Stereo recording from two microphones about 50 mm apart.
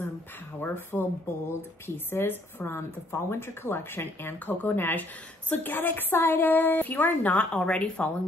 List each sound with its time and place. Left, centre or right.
0.6 s a woman's voice: left
7.3 s speech: centre